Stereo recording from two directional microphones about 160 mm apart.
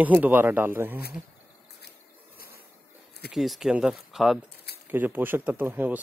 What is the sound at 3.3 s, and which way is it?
Speech, centre (ahead or behind).